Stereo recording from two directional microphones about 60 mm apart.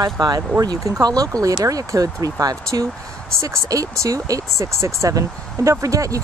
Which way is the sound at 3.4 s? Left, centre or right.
Right.